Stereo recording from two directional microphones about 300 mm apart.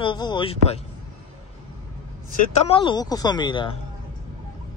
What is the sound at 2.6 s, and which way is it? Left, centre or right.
Speech, centre.